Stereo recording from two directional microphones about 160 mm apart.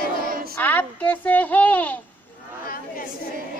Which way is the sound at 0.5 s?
10° left (ahead or behind).